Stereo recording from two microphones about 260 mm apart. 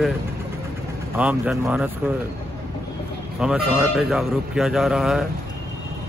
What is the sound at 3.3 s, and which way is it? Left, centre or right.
A man's voice, centre.